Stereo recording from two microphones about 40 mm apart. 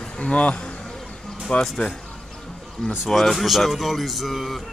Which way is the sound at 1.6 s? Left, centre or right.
Centre.